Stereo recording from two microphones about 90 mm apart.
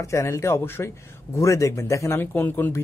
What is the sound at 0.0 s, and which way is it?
A man's voice, 35° left (ahead or behind).